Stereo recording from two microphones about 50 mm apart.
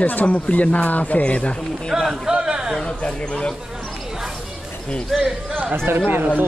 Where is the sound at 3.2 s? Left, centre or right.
Centre.